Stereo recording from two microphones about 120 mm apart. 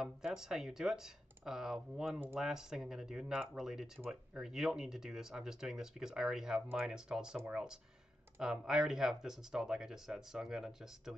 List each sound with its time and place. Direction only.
0.0 s speech: 5° right (ahead or behind)
2.1 s speech: 15° right (ahead or behind)
2.4 s speech: 5° right (ahead or behind)